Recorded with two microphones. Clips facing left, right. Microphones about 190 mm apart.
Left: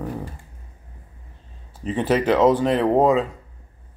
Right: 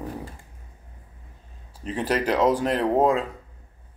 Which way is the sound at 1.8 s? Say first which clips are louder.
Left 4 dB; centre (ahead or behind).